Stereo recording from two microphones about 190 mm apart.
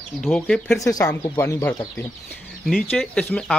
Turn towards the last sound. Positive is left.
turn(degrees=5)  # may be behind; listen again after turning